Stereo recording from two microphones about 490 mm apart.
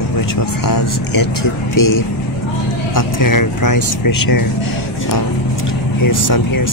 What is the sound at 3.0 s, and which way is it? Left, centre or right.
Speech, left.